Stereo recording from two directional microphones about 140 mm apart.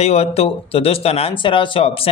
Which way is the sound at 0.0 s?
50° left (ahead or behind).